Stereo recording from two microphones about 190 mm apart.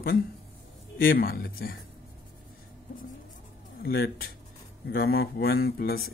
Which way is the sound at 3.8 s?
55° left (ahead or behind).